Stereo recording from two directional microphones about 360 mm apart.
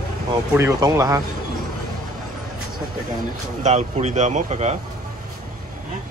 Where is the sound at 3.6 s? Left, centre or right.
Centre.